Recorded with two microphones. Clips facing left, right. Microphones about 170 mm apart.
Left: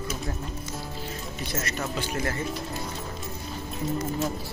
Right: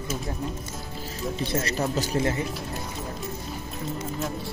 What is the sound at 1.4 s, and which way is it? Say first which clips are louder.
Speech: right 5 dB; 30° right (ahead or behind).